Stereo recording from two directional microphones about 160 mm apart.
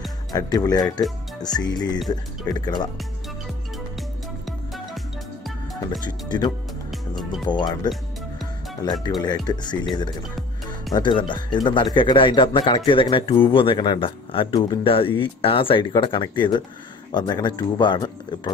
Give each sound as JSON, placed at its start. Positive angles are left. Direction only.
{"t": 0.3, "sound": "speech", "side_deg": 25}
{"t": 4.5, "sound": "music", "side_deg": 0}
{"t": 6.0, "sound": "speech", "side_deg": 25}
{"t": 6.9, "sound": "music", "side_deg": 0}
{"t": 7.4, "sound": "speech", "side_deg": 25}
{"t": 9.2, "sound": "speech", "side_deg": 25}